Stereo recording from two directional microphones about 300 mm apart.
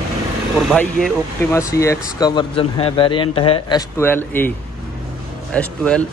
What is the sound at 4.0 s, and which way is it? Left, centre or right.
Speech, centre.